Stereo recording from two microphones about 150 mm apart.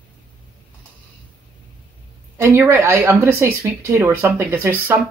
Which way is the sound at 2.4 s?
20° right (ahead or behind).